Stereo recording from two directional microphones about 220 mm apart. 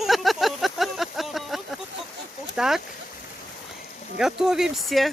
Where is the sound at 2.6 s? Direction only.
Centre (ahead or behind).